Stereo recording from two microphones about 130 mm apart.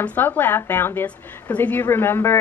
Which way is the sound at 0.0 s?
15° left (ahead or behind).